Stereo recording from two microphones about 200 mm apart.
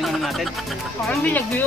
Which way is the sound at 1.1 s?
10° left (ahead or behind).